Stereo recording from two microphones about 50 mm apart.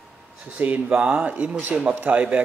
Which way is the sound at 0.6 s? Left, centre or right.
Right.